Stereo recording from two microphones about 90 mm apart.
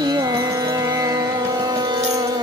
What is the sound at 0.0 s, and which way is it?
Music, 45° right (ahead or behind).